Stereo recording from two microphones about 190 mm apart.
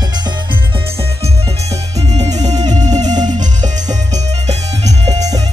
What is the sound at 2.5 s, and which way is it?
Music, 20° right (ahead or behind).